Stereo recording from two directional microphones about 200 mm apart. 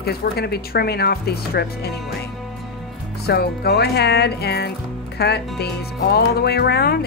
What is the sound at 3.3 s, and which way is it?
Speech, 55° left (ahead or behind).